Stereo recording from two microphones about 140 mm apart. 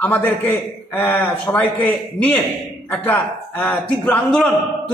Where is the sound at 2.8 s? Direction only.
10° left (ahead or behind).